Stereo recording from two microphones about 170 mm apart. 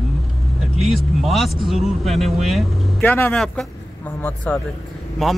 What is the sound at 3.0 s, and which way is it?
Speech, 10° left (ahead or behind).